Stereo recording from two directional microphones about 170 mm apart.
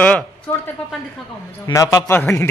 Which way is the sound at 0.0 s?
10° left (ahead or behind).